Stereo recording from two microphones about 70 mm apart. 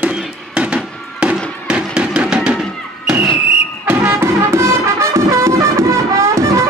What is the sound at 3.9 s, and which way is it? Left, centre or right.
Music, right.